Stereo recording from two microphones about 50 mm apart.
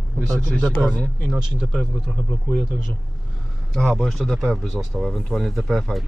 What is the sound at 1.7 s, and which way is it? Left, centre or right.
Speech, centre.